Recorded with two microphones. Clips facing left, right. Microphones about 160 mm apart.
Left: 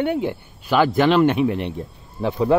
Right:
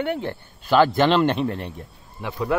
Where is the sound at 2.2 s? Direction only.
30° left (ahead or behind).